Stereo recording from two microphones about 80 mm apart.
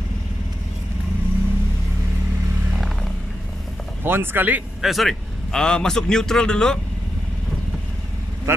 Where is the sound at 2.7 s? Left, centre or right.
Centre.